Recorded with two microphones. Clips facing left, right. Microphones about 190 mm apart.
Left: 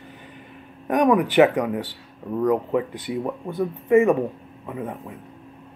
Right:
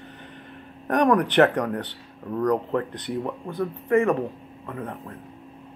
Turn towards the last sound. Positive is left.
turn(degrees=10)  # may be behind; listen again after turning